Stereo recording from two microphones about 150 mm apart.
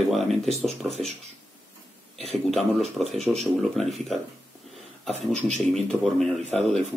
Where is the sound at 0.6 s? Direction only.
45° right (ahead or behind).